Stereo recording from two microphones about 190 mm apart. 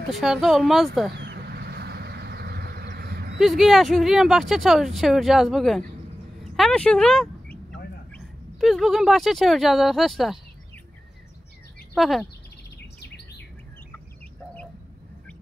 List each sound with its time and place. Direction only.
0.1 s speech: centre (ahead or behind)
1.1 s vehicle: 65° right (ahead or behind)
3.3 s speech: centre (ahead or behind)
11.9 s speech: centre (ahead or behind)
13.0 s bird: 60° left (ahead or behind)